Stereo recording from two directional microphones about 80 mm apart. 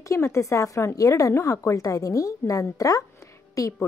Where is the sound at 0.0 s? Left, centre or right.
Left.